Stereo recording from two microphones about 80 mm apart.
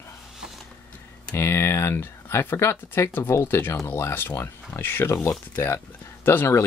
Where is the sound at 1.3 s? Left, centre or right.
Left.